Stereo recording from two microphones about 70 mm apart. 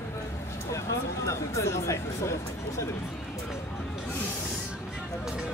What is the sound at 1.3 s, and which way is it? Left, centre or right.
Chatter, left.